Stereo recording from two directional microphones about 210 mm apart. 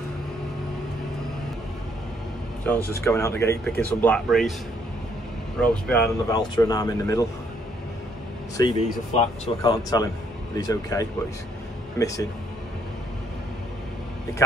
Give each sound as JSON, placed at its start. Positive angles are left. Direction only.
{"t": 2.6, "sound": "speech", "side_deg": 10}
{"t": 5.6, "sound": "speech", "side_deg": 5}
{"t": 6.2, "sound": "speech", "side_deg": 15}
{"t": 8.7, "sound": "speech", "side_deg": 30}
{"t": 9.6, "sound": "speech", "side_deg": 20}